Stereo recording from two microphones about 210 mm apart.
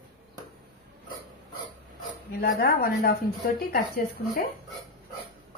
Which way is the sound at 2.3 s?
45° left (ahead or behind).